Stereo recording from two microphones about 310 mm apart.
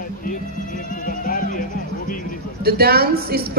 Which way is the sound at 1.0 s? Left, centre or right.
Left.